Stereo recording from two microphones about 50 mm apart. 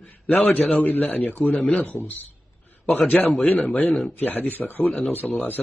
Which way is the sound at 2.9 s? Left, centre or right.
Left.